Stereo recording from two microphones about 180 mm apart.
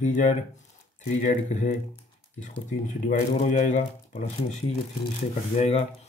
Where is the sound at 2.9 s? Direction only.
45° left (ahead or behind).